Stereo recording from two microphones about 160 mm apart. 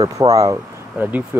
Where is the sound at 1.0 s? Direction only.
10° right (ahead or behind).